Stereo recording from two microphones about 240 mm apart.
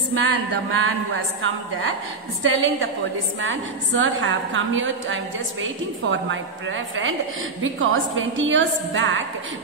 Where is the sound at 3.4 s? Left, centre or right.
Right.